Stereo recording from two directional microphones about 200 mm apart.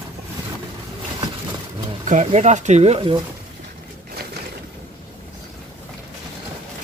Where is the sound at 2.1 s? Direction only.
35° right (ahead or behind).